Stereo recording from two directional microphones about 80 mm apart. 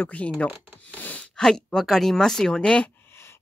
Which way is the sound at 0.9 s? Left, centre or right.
Left.